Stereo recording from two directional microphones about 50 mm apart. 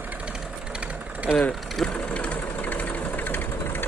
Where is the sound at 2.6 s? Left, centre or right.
Left.